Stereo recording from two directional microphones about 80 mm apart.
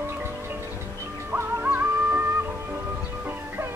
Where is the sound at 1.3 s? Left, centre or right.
Right.